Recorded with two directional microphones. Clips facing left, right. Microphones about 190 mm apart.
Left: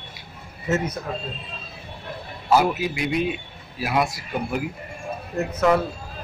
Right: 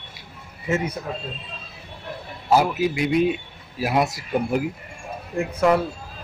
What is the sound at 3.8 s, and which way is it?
Speech, 40° right (ahead or behind).